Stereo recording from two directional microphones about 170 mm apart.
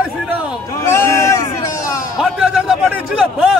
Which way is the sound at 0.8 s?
15° left (ahead or behind).